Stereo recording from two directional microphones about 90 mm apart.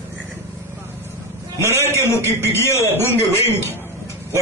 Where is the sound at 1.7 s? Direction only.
30° left (ahead or behind).